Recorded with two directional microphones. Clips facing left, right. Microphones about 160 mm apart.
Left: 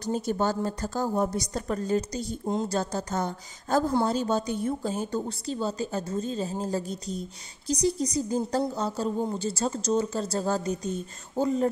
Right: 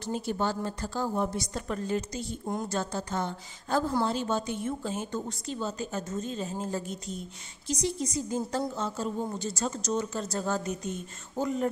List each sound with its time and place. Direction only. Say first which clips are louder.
0.0 s a woman's voice: left 3 dB; 40° left (ahead or behind)
2.4 s a woman's voice: left 5 dB; 20° left (ahead or behind)
2.7 s a woman's voice: left 3 dB; 40° left (ahead or behind)